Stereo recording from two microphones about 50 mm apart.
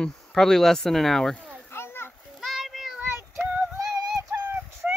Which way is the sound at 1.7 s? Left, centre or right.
Left.